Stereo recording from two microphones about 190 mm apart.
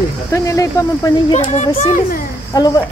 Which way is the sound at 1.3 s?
35° left (ahead or behind).